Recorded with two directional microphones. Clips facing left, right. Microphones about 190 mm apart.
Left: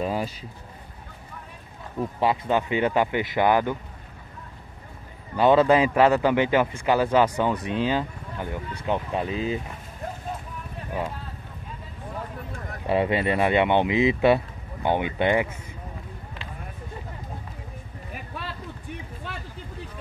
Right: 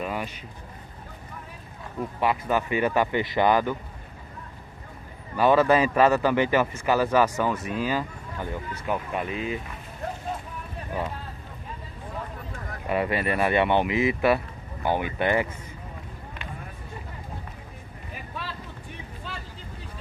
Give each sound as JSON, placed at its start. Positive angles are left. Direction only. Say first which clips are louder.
{"t": 0.0, "sound": "a sound", "louder": "left 4 dB", "side_deg": 35}
{"t": 2.1, "sound": "speech", "louder": "left 1 dB", "side_deg": 25}
{"t": 5.3, "sound": "speech", "louder": "left 2 dB", "side_deg": 20}
{"t": 10.9, "sound": "speech", "louder": "left 1 dB", "side_deg": 10}
{"t": 12.8, "sound": "speech", "louder": "left 3 dB", "side_deg": 25}